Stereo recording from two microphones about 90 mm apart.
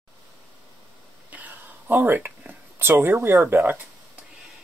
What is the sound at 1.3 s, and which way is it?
Speech, 20° right (ahead or behind).